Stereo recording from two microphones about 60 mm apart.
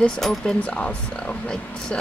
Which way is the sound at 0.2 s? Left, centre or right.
Centre.